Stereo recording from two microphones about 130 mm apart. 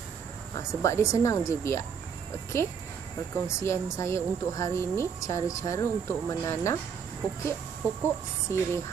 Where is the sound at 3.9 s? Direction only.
20° left (ahead or behind).